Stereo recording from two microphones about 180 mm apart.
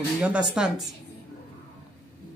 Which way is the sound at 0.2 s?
5° right (ahead or behind).